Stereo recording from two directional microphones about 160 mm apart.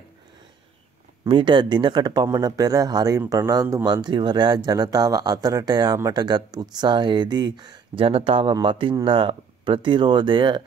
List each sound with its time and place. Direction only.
1.2 s speech: 30° right (ahead or behind)